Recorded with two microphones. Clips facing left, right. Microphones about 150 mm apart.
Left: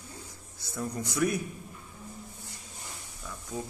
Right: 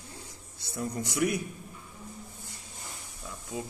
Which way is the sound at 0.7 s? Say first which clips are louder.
Right 1 dB; 25° right (ahead or behind).